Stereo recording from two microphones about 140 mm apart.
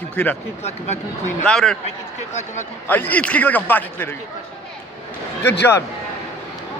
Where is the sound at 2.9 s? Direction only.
10° left (ahead or behind).